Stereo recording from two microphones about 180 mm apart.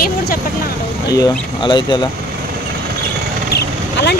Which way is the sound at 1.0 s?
20° left (ahead or behind).